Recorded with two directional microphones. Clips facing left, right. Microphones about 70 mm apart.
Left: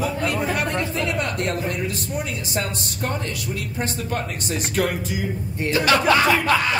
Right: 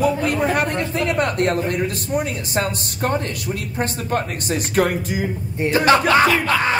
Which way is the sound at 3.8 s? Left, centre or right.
Right.